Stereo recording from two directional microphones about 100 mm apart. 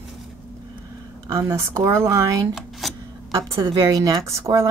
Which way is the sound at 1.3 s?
30° right (ahead or behind).